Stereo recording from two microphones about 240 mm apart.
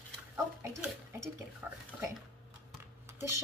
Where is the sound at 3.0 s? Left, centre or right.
Centre.